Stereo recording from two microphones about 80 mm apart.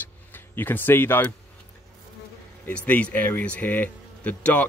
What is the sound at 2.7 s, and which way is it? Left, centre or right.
Speech, centre.